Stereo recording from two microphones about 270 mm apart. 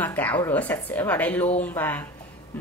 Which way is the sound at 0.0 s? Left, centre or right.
Centre.